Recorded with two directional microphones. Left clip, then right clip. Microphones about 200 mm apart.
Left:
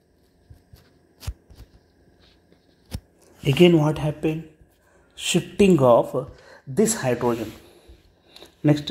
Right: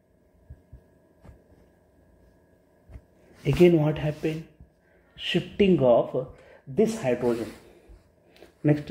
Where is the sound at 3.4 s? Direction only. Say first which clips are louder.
Left 3 dB; 30° left (ahead or behind).